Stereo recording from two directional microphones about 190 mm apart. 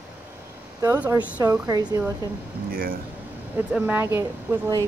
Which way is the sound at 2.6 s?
50° right (ahead or behind).